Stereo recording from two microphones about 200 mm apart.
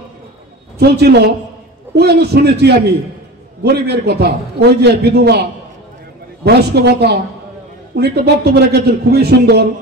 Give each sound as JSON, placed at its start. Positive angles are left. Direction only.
{"t": 0.7, "sound": "a man's voice", "side_deg": -55}
{"t": 6.4, "sound": "a man's voice", "side_deg": -55}